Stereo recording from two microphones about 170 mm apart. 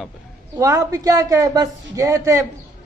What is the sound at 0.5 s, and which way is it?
A woman's voice, 20° right (ahead or behind).